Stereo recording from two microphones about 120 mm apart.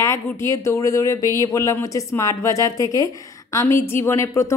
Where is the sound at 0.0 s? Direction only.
25° left (ahead or behind).